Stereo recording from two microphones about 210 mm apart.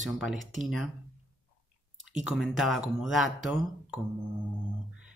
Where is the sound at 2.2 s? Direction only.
Centre (ahead or behind).